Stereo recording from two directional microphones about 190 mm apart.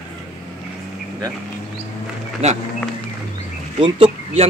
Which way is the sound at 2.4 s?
35° right (ahead or behind).